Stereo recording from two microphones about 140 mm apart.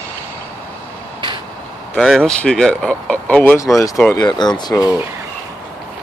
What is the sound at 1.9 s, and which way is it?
Speech, 5° left (ahead or behind).